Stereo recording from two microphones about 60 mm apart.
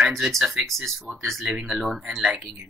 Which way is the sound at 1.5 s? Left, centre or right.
Centre.